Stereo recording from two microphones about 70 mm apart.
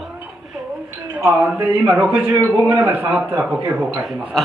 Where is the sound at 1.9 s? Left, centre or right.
Right.